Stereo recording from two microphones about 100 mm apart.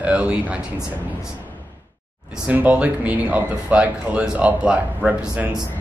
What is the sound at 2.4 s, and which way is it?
Speech, 15° right (ahead or behind).